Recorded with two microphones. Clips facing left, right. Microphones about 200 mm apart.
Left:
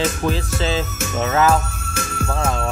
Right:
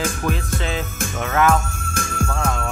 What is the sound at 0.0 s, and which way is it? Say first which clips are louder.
Music: left 3 dB; 25° left (ahead or behind).